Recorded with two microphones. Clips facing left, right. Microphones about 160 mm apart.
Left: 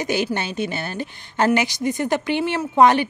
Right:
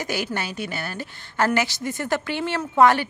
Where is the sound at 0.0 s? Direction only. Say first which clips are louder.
Left 5 dB; 20° left (ahead or behind).